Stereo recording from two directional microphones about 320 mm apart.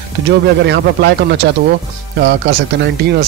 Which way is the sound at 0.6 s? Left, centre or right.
Right.